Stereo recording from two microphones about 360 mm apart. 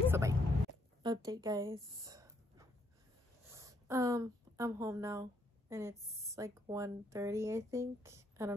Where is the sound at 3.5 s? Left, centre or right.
Centre.